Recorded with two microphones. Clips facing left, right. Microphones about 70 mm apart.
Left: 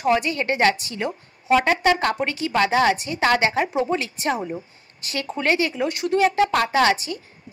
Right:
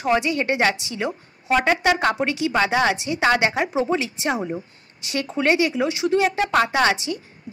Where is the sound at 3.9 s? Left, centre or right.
Centre.